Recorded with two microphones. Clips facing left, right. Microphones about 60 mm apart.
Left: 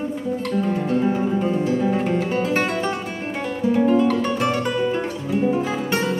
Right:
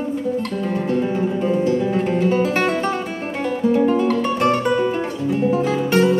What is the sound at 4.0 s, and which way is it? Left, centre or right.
Music, centre.